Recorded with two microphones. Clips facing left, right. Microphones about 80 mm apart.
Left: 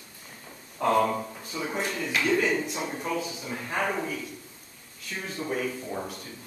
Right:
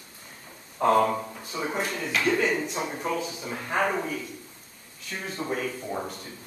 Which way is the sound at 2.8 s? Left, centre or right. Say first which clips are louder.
Right 1 dB; centre.